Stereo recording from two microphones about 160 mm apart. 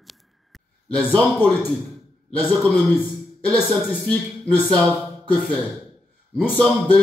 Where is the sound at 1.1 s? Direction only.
5° left (ahead or behind).